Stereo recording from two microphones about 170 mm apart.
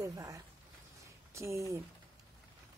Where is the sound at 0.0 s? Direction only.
20° right (ahead or behind).